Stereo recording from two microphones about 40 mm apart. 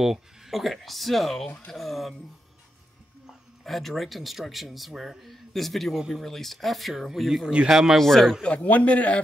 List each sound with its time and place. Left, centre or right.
0.0 s speech: centre
3.6 s speech: centre
5.9 s speech: centre
6.2 s speech: centre
8.0 s a man's voice: centre
8.6 s a man's voice: left